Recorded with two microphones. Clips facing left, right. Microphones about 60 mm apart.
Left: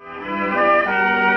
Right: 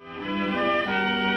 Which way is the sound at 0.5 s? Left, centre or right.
Left.